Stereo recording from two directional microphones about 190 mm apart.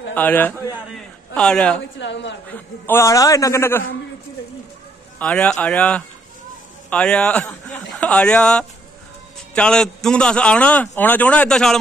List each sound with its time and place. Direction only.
0.1 s a man's voice: 10° left (ahead or behind)
2.0 s a woman's voice: 70° left (ahead or behind)
2.5 s a man's voice: 15° left (ahead or behind)
5.2 s a man's voice: 5° left (ahead or behind)